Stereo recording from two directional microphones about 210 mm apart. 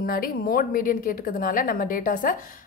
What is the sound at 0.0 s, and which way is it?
A woman's voice, 45° left (ahead or behind).